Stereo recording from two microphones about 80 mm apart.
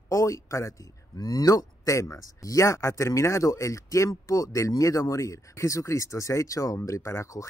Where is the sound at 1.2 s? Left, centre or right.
Left.